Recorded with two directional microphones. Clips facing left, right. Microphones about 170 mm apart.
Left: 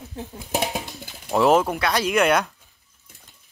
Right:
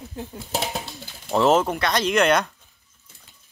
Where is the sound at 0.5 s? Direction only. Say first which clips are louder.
Left 3 dB; 15° left (ahead or behind).